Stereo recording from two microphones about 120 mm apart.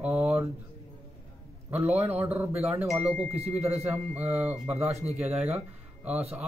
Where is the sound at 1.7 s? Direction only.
15° right (ahead or behind).